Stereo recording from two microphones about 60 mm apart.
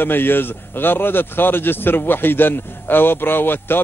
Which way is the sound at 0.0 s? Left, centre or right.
Left.